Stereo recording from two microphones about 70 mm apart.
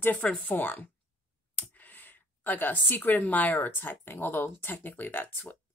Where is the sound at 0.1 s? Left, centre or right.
Centre.